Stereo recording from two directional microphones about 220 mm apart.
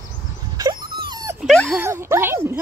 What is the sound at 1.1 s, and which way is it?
Dog, 15° right (ahead or behind).